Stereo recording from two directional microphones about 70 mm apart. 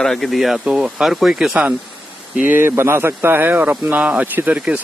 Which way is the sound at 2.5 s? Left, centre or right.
Right.